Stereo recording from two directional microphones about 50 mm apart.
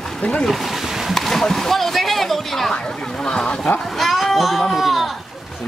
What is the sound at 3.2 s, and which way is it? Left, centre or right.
Speech, centre.